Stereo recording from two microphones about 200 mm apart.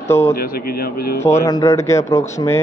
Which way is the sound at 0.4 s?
50° left (ahead or behind).